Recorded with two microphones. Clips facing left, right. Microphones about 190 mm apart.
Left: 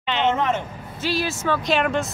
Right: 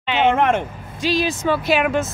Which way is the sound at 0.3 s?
55° right (ahead or behind).